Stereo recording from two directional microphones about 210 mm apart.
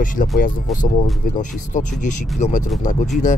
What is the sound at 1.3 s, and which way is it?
Speech, 35° left (ahead or behind).